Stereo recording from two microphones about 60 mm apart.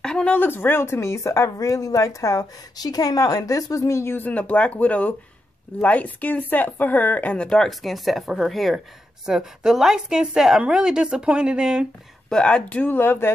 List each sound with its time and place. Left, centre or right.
0.0 s a sound: centre
0.3 s a woman's voice: left
4.2 s a woman's voice: left
7.3 s speech: centre
7.8 s a woman's voice: centre
12.3 s a woman's voice: centre
12.8 s speech: left